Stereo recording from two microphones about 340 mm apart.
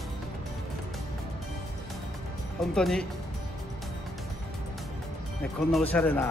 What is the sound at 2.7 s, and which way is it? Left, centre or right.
Speech, centre.